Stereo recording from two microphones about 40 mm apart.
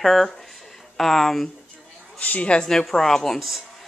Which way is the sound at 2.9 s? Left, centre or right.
Centre.